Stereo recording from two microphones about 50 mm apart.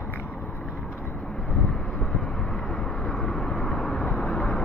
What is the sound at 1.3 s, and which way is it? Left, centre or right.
Vehicle, left.